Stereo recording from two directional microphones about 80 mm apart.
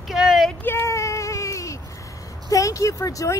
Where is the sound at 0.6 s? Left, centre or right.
Left.